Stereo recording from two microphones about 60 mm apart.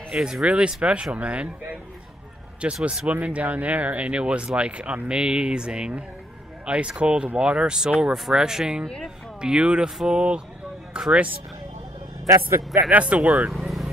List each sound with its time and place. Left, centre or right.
0.1 s speech: centre
12.9 s speech: right
13.5 s vehicle: centre